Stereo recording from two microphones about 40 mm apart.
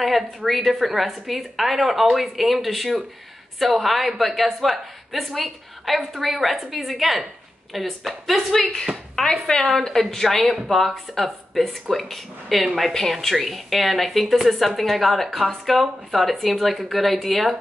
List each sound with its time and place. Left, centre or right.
0.5 s a woman's voice: centre
8.5 s a woman's voice: centre
9.7 s a woman's voice: centre